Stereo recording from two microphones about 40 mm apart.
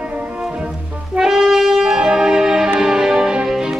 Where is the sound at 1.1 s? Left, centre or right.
Centre.